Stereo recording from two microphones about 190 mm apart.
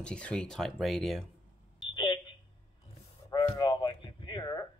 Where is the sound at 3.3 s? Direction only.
20° left (ahead or behind).